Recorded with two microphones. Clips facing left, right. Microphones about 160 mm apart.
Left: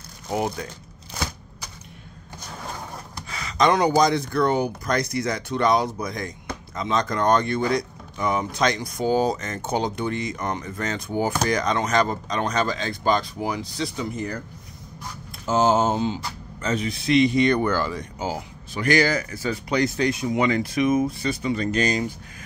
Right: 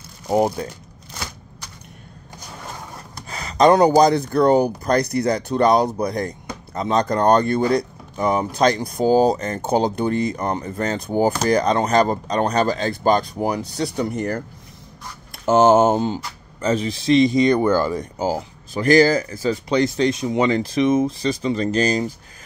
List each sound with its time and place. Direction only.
0.3 s speech: 40° right (ahead or behind)
3.3 s speech: 35° right (ahead or behind)
15.4 s speech: 60° right (ahead or behind)
16.6 s speech: 35° right (ahead or behind)